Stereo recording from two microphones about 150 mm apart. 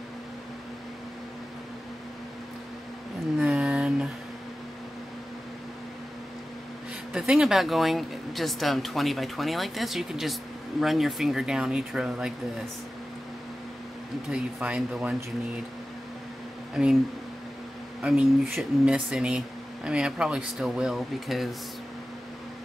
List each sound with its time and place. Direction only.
3.3 s a sound: 5° right (ahead or behind)
7.1 s speech: 5° right (ahead or behind)
14.3 s speech: 5° right (ahead or behind)
16.8 s speech: centre (ahead or behind)
18.0 s speech: 5° right (ahead or behind)